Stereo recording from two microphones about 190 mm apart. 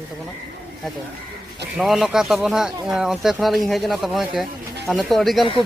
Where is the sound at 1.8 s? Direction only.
Centre (ahead or behind).